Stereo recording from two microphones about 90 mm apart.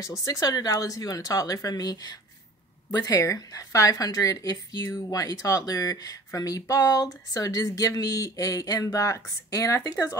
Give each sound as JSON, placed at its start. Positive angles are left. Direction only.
{"t": 0.0, "sound": "speech", "side_deg": 35}